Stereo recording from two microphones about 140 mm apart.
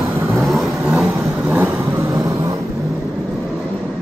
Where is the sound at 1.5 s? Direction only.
15° right (ahead or behind).